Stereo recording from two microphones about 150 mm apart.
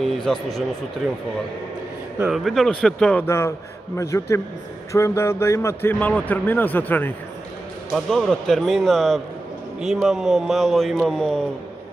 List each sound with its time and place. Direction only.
0.0 s a man's voice: centre (ahead or behind)
2.2 s a man's voice: centre (ahead or behind)
3.3 s speech: 15° left (ahead or behind)
7.9 s a man's voice: centre (ahead or behind)